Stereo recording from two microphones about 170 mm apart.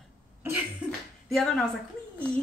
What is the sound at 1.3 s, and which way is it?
Speech, centre (ahead or behind).